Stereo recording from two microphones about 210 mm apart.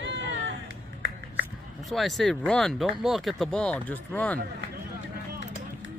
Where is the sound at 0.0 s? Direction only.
60° right (ahead or behind).